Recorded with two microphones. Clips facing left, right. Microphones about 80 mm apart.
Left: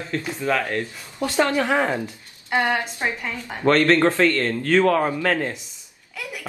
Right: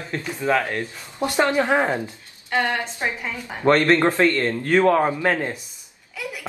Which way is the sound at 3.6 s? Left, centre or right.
Centre.